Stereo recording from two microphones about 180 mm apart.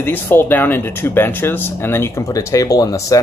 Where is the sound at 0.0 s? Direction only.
10° left (ahead or behind).